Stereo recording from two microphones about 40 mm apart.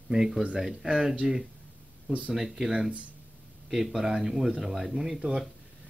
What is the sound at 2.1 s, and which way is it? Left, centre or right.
Speech, right.